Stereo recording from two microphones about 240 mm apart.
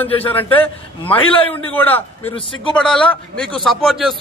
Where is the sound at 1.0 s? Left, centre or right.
Left.